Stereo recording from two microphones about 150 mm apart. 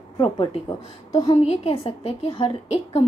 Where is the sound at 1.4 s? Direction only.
40° left (ahead or behind).